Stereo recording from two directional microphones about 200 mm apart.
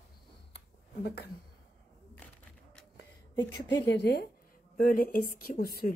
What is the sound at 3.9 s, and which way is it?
Speech, 60° left (ahead or behind).